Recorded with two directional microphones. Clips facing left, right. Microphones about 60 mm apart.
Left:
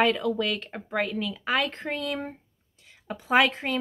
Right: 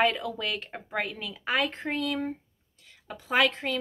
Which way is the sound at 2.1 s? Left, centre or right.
Centre.